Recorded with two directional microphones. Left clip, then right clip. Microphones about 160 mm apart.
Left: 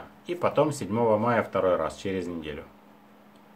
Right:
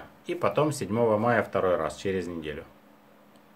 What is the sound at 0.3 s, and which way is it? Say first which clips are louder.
Speech: left 1 dB; 20° right (ahead or behind).